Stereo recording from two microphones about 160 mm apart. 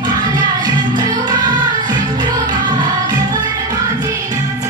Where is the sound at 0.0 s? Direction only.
25° right (ahead or behind).